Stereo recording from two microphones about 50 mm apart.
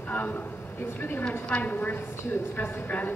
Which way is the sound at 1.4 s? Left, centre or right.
Left.